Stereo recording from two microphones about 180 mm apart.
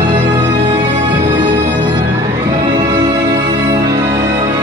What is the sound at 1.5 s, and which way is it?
Music, 75° right (ahead or behind).